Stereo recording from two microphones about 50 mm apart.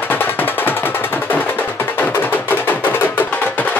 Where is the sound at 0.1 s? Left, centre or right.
Left.